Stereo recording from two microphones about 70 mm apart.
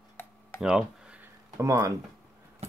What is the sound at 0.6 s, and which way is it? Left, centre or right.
Speech, centre.